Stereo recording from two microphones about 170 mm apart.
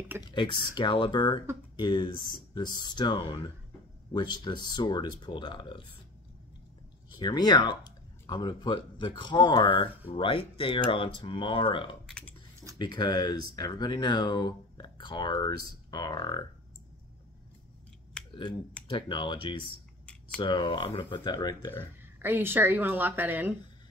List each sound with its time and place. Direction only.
0.2 s speech: 25° left (ahead or behind)
7.1 s speech: 25° left (ahead or behind)
12.1 s chewing: 5° left (ahead or behind)
12.7 s speech: 25° left (ahead or behind)
18.9 s speech: 30° left (ahead or behind)
22.2 s a woman's voice: 10° right (ahead or behind)